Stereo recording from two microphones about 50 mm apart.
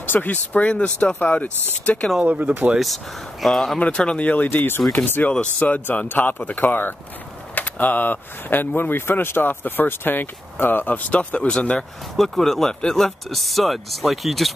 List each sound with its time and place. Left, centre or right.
0.0 s speech: left
1.2 s speech: left
2.2 s speech: right
2.8 s speech: centre
3.8 s speech: left
4.5 s speech: left
5.6 s speech: left
12.2 s speech: centre